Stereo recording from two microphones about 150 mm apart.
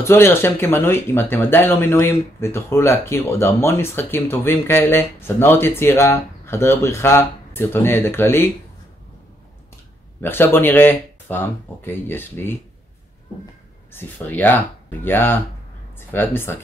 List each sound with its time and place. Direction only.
0.0 s speech: 15° left (ahead or behind)
10.2 s speech: 15° left (ahead or behind)
13.9 s speech: 10° left (ahead or behind)